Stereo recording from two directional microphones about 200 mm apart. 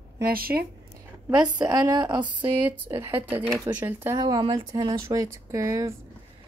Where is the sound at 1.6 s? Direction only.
20° right (ahead or behind).